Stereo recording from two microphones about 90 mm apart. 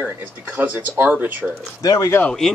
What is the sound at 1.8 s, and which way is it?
Speech, 45° left (ahead or behind).